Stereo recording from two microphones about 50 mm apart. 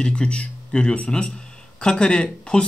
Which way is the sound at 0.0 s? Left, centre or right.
Centre.